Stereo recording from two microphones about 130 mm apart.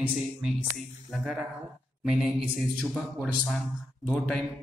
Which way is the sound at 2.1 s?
5° right (ahead or behind).